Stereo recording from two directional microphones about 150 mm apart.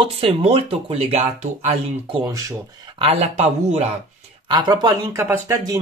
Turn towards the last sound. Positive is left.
turn(degrees=-20)  # may be behind; listen again after turning